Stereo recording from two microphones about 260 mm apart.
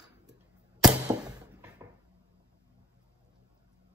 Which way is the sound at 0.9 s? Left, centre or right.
Centre.